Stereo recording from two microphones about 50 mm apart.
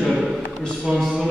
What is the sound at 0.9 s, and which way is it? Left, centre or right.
Mantra, centre.